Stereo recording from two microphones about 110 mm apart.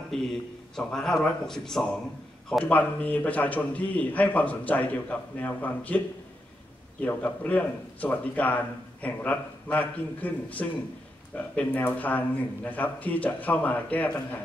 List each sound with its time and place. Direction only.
0.1 s a man's voice: 5° left (ahead or behind)